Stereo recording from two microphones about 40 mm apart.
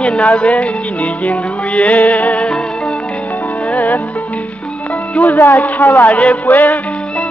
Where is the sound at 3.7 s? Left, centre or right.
Left.